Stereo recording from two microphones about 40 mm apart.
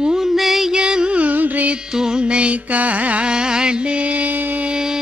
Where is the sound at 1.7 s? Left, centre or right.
Centre.